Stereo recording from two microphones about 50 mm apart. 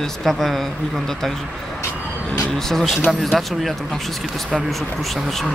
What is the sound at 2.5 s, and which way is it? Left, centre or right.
Speech, centre.